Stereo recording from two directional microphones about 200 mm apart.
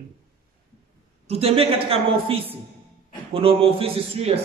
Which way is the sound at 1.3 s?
30° right (ahead or behind).